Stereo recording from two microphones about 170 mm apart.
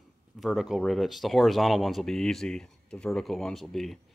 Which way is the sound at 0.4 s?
Centre (ahead or behind).